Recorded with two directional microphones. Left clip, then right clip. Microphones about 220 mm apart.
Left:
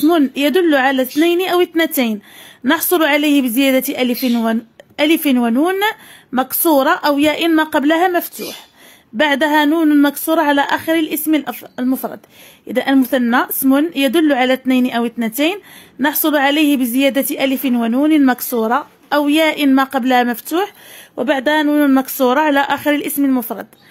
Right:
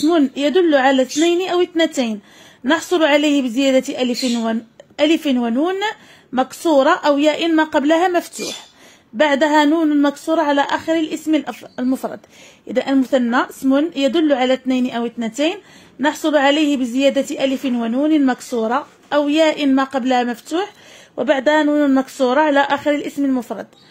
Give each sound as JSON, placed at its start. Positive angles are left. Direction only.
{"t": 0.0, "sound": "a woman's voice", "side_deg": 25}
{"t": 9.1, "sound": "a woman's voice", "side_deg": 25}